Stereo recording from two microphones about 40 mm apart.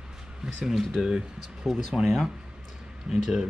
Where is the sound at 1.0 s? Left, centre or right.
Centre.